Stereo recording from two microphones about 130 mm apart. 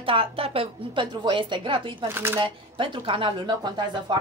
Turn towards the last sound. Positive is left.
turn(degrees=-35)  # may be behind; listen again after turning